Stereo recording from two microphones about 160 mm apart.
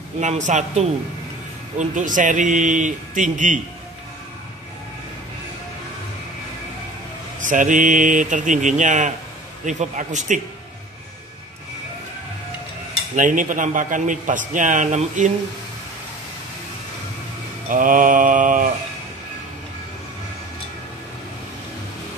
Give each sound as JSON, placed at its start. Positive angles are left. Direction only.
{"t": 0.2, "sound": "speech", "side_deg": -50}
{"t": 7.3, "sound": "speech", "side_deg": -55}
{"t": 13.1, "sound": "speech", "side_deg": -55}
{"t": 17.6, "sound": "mantra", "side_deg": -55}